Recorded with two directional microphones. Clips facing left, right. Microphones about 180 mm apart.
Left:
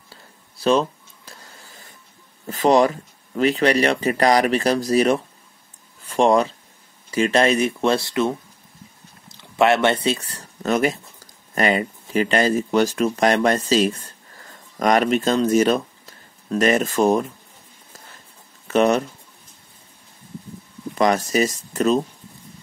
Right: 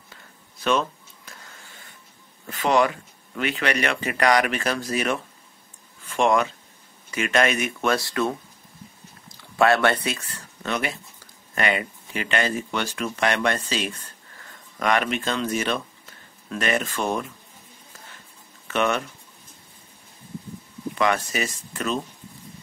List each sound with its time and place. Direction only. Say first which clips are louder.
0.1 s a sound: left 3 dB; 35° left (ahead or behind)
2.4 s speech: left 5 dB; 35° left (ahead or behind)
18.7 s speech: left 7 dB; 35° left (ahead or behind)
21.0 s speech: left 6 dB; 40° left (ahead or behind)